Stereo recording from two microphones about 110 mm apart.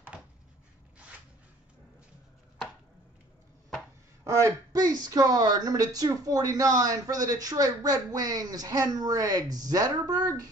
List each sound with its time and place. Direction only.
4.2 s speech: 25° right (ahead or behind)